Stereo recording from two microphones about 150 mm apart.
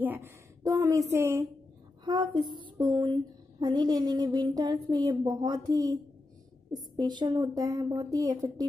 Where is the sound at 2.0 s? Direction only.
30° right (ahead or behind).